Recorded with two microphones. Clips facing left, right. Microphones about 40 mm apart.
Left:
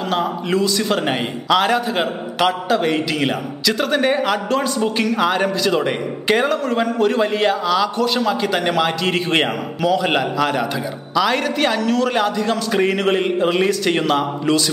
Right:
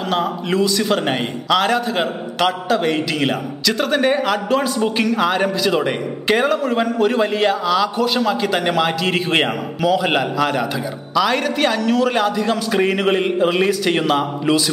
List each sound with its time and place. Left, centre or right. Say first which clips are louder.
0.1 s a man's voice: even; centre